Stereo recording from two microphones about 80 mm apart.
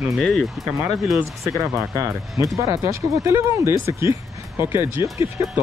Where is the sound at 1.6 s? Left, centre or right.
Right.